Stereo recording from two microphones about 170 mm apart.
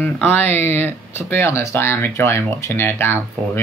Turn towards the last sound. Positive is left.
turn(degrees=15)  # may be behind; listen again after turning